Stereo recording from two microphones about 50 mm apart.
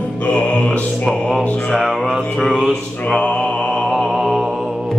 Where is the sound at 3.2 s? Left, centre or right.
Centre.